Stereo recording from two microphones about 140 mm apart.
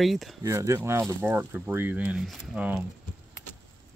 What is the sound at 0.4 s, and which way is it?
Speech, 20° right (ahead or behind).